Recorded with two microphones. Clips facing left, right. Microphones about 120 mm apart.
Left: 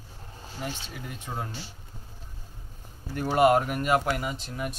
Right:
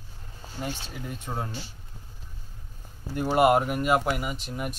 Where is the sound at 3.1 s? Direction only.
15° right (ahead or behind).